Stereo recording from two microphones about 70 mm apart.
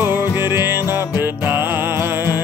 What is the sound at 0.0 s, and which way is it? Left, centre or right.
Music, right.